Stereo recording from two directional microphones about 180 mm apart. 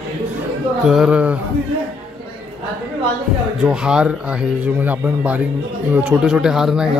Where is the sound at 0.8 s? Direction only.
5° right (ahead or behind).